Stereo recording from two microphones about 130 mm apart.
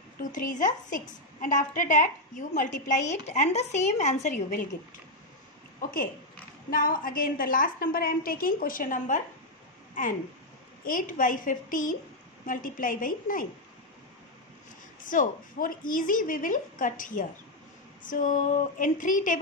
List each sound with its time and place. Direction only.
0.2 s a woman's voice: 85° left
5.8 s a woman's voice: 90° left
10.0 s a woman's voice: 90° left
15.0 s a woman's voice: 90° left
18.0 s a sound: 90° left